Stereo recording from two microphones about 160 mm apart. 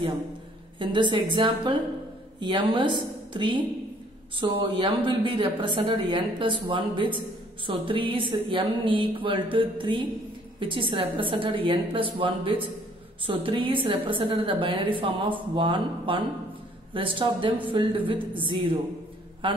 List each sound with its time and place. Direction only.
0.7 s a woman's voice: 30° right (ahead or behind)